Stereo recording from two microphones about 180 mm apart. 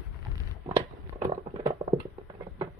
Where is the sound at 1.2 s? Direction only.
35° right (ahead or behind).